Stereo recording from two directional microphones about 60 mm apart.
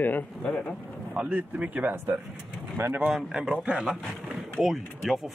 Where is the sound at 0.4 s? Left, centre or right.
Left.